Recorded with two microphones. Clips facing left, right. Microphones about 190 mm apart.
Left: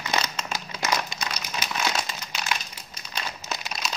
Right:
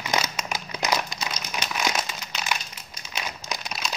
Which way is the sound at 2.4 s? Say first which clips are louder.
Right 1 dB; 5° right (ahead or behind).